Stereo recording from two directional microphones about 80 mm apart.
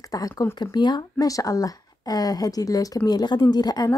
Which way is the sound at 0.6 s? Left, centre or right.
Left.